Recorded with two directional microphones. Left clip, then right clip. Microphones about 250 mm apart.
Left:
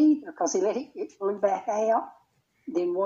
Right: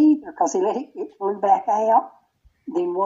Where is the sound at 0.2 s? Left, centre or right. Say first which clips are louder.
Right 5 dB; centre.